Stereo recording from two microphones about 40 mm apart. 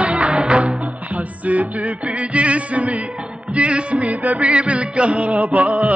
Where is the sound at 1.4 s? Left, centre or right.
Right.